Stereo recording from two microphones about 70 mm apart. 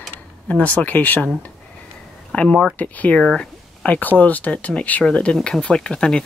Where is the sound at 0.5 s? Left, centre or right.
Centre.